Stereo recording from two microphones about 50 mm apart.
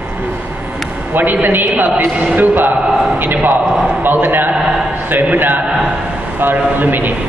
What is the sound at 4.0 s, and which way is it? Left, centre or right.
A man's voice, right.